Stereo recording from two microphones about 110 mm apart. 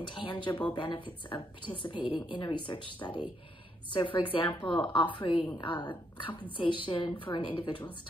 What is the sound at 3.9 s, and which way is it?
Speech, 50° left (ahead or behind).